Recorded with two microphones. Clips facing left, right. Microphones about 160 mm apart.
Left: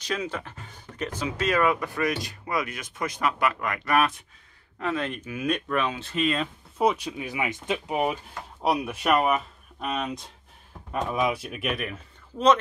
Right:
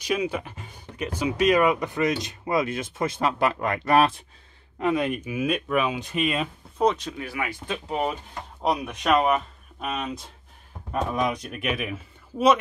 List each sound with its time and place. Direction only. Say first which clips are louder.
0.0 s speech: right 4 dB; 10° right (ahead or behind); by 4.1 s 30° right (ahead or behind)
4.7 s speech: right 5 dB; 15° right (ahead or behind)
6.8 s speech: right 1 dB; 10° left (ahead or behind); by 12.5 s 10° right (ahead or behind)